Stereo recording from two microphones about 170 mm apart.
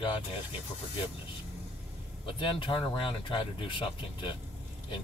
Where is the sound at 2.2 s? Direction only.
30° left (ahead or behind).